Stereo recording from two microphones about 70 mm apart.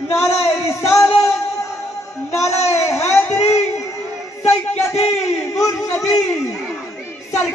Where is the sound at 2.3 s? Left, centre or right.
Left.